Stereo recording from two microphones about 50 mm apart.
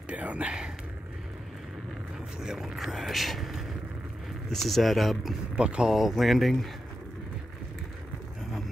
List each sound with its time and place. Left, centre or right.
0.1 s a sound: right
2.4 s speech: centre
5.6 s speech: centre
5.9 s speech: centre